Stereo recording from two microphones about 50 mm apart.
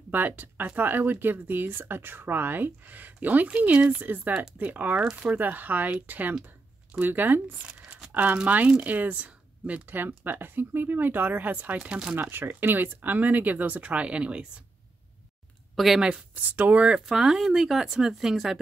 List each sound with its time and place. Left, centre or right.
0.1 s speech: right
4.0 s speech: right
7.6 s speech: centre
8.1 s speech: right
9.8 s speech: right
12.2 s speech: right
15.7 s speech: centre
16.4 s speech: right
17.0 s speech: centre